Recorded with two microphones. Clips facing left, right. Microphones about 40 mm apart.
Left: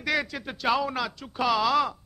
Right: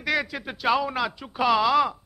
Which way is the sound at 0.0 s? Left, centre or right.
Centre.